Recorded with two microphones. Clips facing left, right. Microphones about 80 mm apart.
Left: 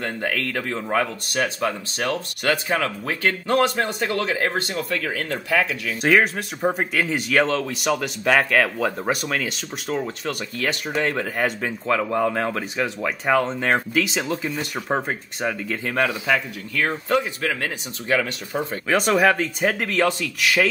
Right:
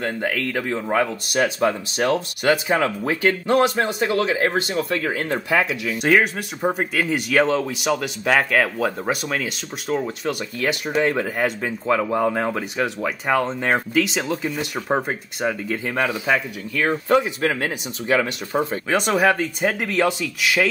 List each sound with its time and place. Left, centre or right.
0.0 s speech: centre
4.9 s speech: right
6.0 s speech: centre
18.5 s speech: right
18.9 s speech: centre